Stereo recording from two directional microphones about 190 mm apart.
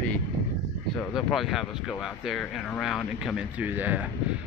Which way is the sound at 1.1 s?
Centre (ahead or behind).